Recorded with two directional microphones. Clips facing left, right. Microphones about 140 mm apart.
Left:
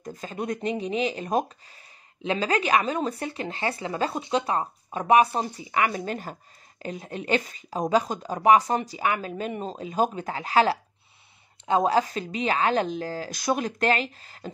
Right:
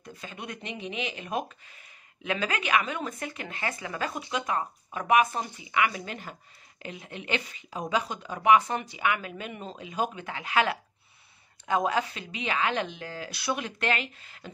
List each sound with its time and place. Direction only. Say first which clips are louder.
0.0 s speech: left 8 dB; 40° left (ahead or behind)